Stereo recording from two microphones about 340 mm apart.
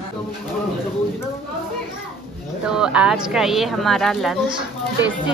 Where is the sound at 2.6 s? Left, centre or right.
Centre.